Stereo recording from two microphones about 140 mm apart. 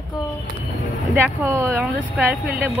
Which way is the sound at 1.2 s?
15° right (ahead or behind).